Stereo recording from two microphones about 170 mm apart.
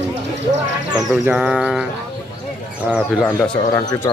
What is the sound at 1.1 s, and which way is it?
Speech, 5° right (ahead or behind).